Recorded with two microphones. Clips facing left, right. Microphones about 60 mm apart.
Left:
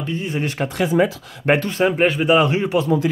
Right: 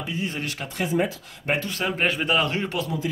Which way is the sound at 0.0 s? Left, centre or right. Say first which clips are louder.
Left 4 dB; centre.